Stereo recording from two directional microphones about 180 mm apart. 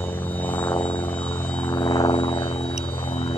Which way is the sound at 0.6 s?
10° left (ahead or behind).